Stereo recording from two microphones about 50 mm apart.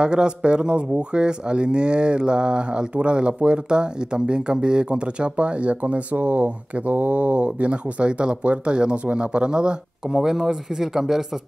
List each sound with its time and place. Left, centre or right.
0.0 s speech: centre